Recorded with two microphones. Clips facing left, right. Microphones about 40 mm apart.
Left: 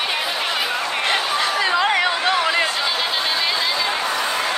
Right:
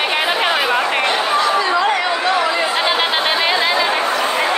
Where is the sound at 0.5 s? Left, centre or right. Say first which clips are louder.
Right 6 dB; right.